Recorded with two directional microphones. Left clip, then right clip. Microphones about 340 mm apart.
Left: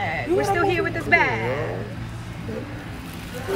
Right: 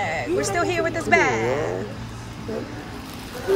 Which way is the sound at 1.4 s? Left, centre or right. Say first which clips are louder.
Right 3 dB; right.